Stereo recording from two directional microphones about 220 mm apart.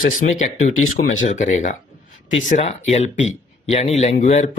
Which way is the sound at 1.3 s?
35° left (ahead or behind).